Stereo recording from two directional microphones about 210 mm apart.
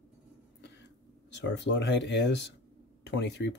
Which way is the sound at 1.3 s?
55° left (ahead or behind).